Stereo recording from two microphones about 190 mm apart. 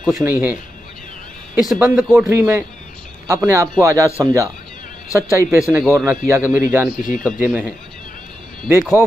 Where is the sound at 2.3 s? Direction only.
10° right (ahead or behind).